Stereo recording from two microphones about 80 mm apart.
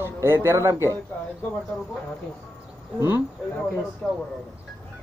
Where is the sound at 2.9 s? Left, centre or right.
Right.